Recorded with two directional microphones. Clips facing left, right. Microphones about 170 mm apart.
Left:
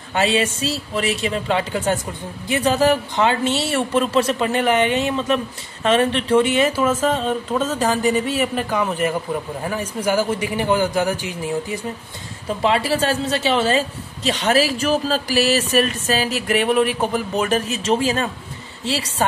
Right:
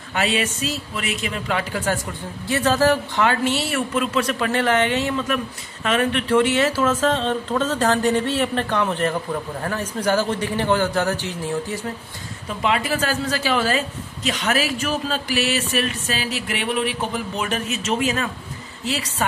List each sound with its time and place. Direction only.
0.1 s speech: 30° left (ahead or behind); by 11.8 s 10° left (ahead or behind)
12.4 s a woman's voice: 30° left (ahead or behind)